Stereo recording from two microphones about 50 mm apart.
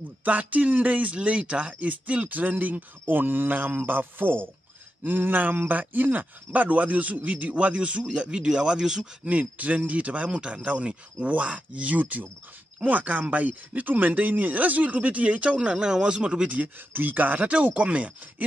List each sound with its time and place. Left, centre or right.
0.2 s speech: right; by 9.1 s centre
9.2 s speech: right